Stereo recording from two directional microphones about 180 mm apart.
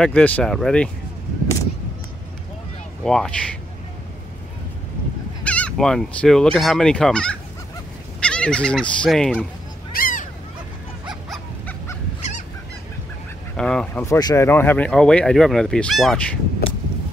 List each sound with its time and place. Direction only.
0.0 s fowl: 10° left (ahead or behind)
3.0 s fowl: 5° left (ahead or behind)
5.4 s fowl: 5° left (ahead or behind)
9.9 s a sound: 50° left (ahead or behind)
11.2 s dog: centre (ahead or behind)
12.2 s goose: 45° left (ahead or behind)
13.6 s fowl: 5° left (ahead or behind)
14.0 s speech: 15° left (ahead or behind)